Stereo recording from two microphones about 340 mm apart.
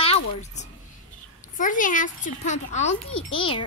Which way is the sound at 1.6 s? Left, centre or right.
Left.